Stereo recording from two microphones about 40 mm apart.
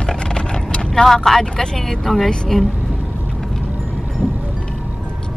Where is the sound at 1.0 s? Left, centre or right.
Centre.